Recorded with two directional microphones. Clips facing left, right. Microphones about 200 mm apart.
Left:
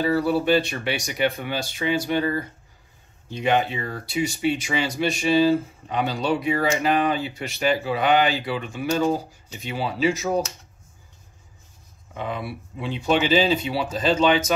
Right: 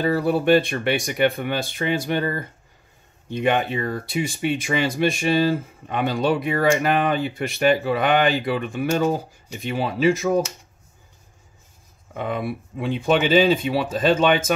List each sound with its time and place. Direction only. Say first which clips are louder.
0.0 s speech: right 1 dB; 55° right (ahead or behind)
12.1 s speech: right 4 dB; 50° right (ahead or behind)